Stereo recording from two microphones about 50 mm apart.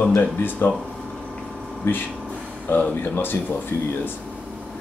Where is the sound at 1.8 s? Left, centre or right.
Left.